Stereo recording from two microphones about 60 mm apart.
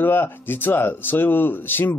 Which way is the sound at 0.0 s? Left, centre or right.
Left.